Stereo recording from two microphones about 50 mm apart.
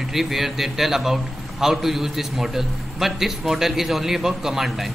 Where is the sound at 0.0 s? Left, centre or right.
Centre.